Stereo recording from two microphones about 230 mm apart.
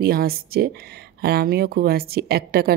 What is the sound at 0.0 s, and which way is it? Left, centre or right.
Speech, right.